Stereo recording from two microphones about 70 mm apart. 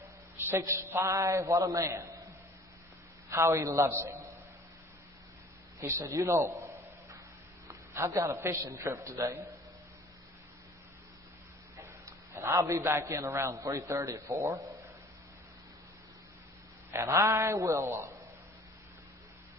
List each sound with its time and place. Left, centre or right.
0.5 s a man's voice: right
3.3 s a man's voice: right
5.8 s a man's voice: right
7.6 s a man's voice: right
12.4 s a man's voice: right
16.9 s a man's voice: right